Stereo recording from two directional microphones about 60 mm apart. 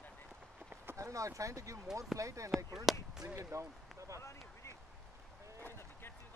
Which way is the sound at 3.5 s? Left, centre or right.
Right.